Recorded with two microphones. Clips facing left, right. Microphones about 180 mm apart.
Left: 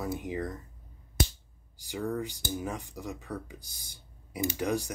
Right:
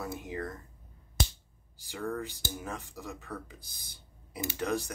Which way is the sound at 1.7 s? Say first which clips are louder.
Left 3 dB; 15° left (ahead or behind).